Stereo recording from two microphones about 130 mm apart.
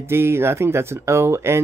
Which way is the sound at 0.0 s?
20° right (ahead or behind).